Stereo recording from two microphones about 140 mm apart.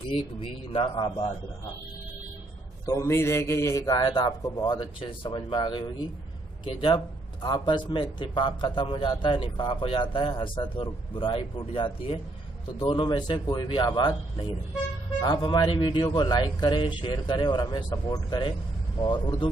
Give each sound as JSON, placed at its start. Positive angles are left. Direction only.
{"t": 0.1, "sound": "a man's voice", "side_deg": 40}
{"t": 2.9, "sound": "a man's voice", "side_deg": 20}
{"t": 15.2, "sound": "a man's voice", "side_deg": 35}